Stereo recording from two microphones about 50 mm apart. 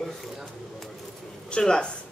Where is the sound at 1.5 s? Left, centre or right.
Centre.